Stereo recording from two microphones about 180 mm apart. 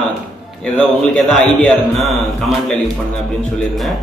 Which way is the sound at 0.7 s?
5° left (ahead or behind).